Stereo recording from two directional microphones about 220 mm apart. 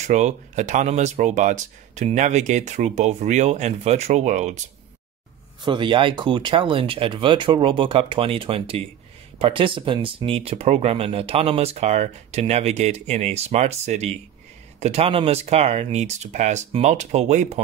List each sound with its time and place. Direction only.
0.0 s speech: 30° right (ahead or behind)
5.6 s speech: 20° right (ahead or behind)